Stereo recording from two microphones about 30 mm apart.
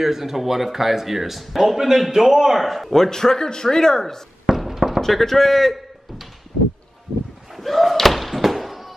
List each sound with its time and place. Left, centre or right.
0.0 s a man's voice: centre
2.9 s a man's voice: centre
4.6 s a sound: centre
5.0 s a man's voice: centre
7.5 s slam: centre